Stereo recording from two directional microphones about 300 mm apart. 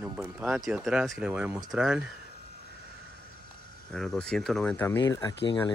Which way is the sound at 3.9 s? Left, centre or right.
Centre.